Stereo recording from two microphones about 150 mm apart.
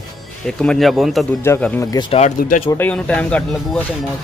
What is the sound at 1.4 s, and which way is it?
Speech, 15° left (ahead or behind).